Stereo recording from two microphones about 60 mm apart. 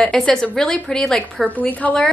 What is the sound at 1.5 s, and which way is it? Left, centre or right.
Speech, left.